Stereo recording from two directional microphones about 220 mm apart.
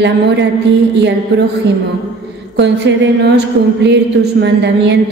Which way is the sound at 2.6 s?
50° right (ahead or behind).